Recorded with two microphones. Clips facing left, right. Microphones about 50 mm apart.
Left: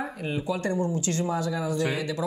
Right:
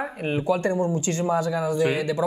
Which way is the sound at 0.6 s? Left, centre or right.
Right.